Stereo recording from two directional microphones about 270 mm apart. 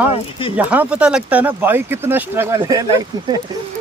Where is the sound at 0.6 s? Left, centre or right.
Centre.